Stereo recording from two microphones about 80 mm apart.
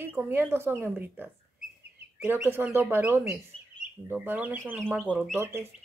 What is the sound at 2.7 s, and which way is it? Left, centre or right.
Speech, right.